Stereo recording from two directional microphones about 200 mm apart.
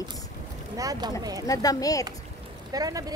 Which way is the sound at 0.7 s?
20° right (ahead or behind).